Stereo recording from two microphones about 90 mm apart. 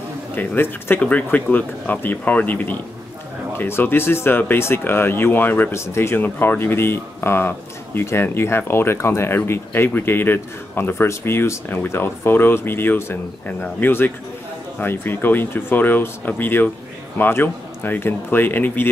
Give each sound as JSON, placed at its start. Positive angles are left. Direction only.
{"t": 0.4, "sound": "speech", "side_deg": 25}